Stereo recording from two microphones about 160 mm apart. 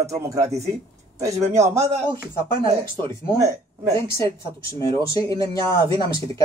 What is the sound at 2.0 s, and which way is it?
Speech, 15° left (ahead or behind).